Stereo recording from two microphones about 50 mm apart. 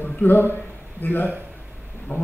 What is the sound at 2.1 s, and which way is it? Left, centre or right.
Speech, left.